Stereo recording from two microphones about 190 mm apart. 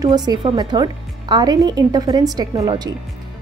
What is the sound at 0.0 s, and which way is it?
A woman's voice, 20° right (ahead or behind).